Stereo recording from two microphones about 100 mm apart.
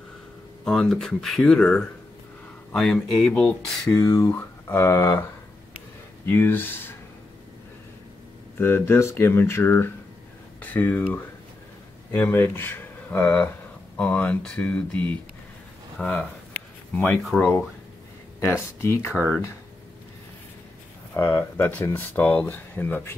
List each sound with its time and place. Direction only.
0.7 s speech: 5° left (ahead or behind)
3.9 s speech: 35° left (ahead or behind)
4.4 s speech: 25° left (ahead or behind)
6.2 s speech: 20° left (ahead or behind)
8.5 s speech: 25° left (ahead or behind)
12.1 s speech: 20° left (ahead or behind)
16.0 s a sound: 10° left (ahead or behind)
17.2 s speech: centre (ahead or behind)
18.4 s speech: 30° left (ahead or behind)
21.1 s speech: 25° left (ahead or behind)